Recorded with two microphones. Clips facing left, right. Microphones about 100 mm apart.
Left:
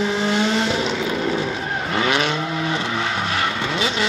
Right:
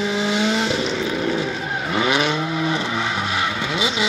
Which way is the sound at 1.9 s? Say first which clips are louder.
Right 1 dB; 20° right (ahead or behind).